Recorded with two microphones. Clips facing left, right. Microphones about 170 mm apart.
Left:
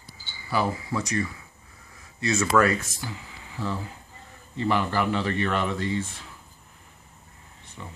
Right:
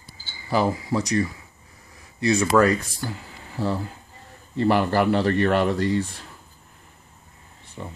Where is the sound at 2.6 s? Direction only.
45° right (ahead or behind).